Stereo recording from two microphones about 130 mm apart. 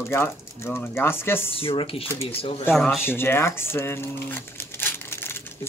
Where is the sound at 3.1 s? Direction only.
20° left (ahead or behind).